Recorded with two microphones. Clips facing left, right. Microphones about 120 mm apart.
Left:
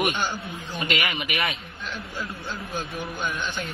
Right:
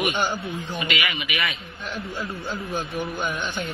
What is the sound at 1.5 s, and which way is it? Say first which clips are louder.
Speech: right 2 dB; centre (ahead or behind).